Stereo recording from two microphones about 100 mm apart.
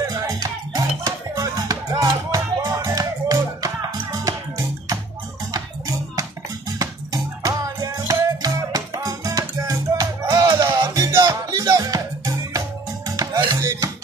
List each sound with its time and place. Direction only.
0.0 s music: 35° right (ahead or behind)